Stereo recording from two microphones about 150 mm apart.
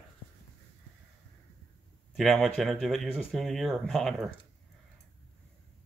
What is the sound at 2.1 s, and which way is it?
Speech, centre (ahead or behind).